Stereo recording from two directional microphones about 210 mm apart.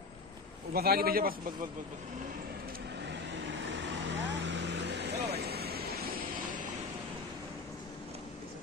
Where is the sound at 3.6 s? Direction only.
60° right (ahead or behind).